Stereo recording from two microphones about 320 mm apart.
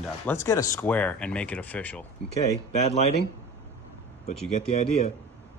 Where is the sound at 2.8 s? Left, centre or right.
Centre.